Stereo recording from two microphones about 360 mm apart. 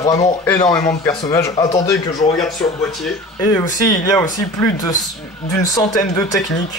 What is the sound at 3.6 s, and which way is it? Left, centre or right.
Speech, left.